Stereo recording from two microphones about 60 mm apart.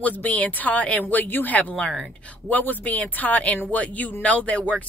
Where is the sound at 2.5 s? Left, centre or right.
Left.